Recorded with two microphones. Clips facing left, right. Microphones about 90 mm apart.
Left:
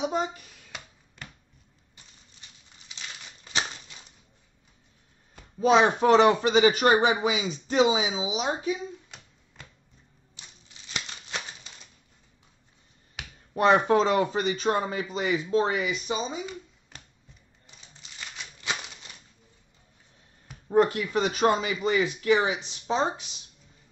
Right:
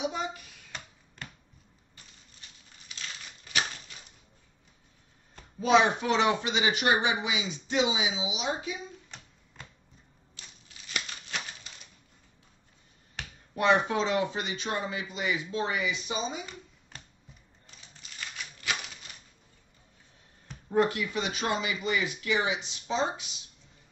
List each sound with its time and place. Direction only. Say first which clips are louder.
0.0 s a sound: left 4 dB; 40° left (ahead or behind)
5.6 s speech: left 3 dB; 35° left (ahead or behind)
13.2 s finger snapping: even; 10° left (ahead or behind)
13.6 s a man's voice: left 5 dB; 40° left (ahead or behind)
18.0 s a sound: even; 20° left (ahead or behind)
20.7 s a man's voice: left 4 dB; 35° left (ahead or behind)